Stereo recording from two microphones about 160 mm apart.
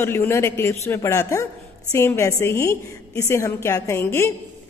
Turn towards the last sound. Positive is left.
turn(degrees=15)  # may be behind; listen again after turning